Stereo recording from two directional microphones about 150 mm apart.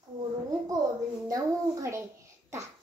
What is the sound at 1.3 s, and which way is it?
Speech, 20° right (ahead or behind).